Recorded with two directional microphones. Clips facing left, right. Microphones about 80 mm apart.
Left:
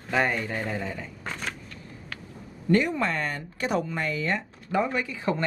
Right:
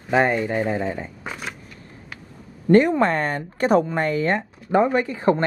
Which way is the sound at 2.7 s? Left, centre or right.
Right.